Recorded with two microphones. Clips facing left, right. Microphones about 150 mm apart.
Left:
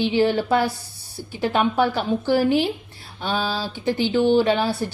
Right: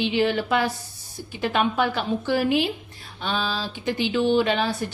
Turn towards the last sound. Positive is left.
turn(degrees=35)  # may be behind; listen again after turning